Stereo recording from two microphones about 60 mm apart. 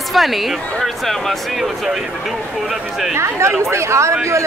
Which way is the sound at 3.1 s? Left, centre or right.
Right.